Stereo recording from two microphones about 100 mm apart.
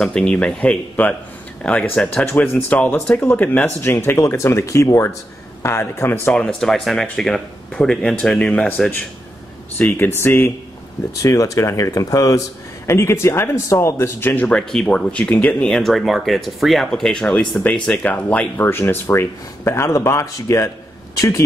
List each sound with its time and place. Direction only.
0.0 s speech: 10° left (ahead or behind)
2.2 s speech: 20° left (ahead or behind)
6.3 s speech: 5° left (ahead or behind); by 10.5 s 20° left (ahead or behind)
11.2 s speech: 35° left (ahead or behind); by 14.6 s 15° left (ahead or behind)
14.7 s speech: 5° left (ahead or behind); by 20.7 s 30° left (ahead or behind)